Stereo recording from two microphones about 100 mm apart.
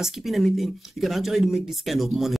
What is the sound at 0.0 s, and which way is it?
Speech, centre (ahead or behind).